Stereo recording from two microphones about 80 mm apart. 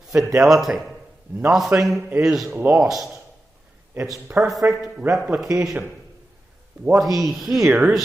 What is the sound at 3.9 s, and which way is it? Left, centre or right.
Speech, right.